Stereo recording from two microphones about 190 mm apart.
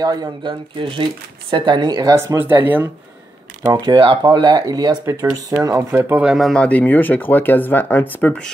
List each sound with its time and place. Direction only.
0.0 s speech: 20° right (ahead or behind)
3.6 s speech: 20° right (ahead or behind); by 8.5 s 10° left (ahead or behind)